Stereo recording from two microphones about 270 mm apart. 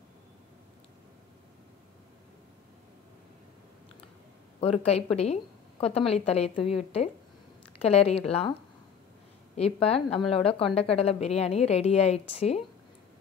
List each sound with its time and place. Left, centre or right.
4.6 s a woman's voice: left
7.8 s a woman's voice: left
9.6 s a woman's voice: left